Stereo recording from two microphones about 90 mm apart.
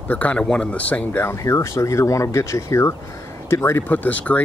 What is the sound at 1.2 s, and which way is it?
Speech, 30° left (ahead or behind).